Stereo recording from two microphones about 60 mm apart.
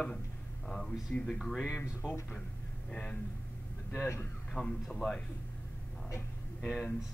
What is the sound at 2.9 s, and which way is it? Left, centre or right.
Speech, centre.